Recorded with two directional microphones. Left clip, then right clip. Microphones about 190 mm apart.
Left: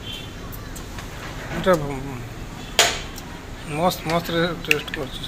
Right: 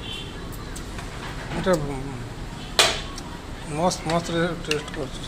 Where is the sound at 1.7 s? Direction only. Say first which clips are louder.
Left 4 dB; centre (ahead or behind).